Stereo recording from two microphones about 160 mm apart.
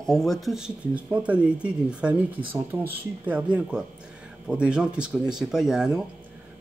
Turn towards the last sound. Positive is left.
turn(degrees=-5)  # may be behind; listen again after turning